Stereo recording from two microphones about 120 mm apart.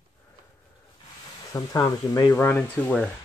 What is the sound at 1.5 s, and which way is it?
Speech, 30° left (ahead or behind).